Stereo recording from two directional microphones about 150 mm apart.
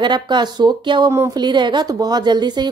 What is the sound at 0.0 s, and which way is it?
Speech, 30° right (ahead or behind).